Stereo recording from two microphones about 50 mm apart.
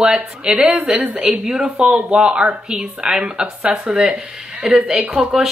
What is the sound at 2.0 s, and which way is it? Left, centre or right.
Speech, right.